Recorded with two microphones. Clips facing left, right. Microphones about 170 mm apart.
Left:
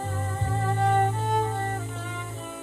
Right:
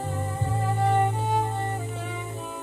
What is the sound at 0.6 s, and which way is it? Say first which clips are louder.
Music: even; 10° right (ahead or behind).